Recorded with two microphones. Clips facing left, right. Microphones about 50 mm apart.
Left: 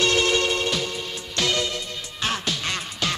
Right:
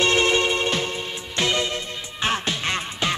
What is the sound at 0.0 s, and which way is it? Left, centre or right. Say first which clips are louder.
Music: right 2 dB; right.